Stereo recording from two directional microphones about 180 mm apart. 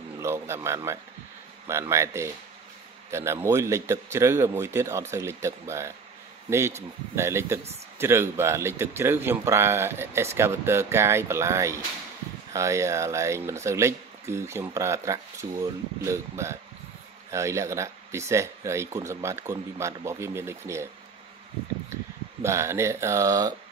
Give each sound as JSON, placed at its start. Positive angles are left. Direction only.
{"t": 0.2, "sound": "speech", "side_deg": -15}
{"t": 22.4, "sound": "speech", "side_deg": -15}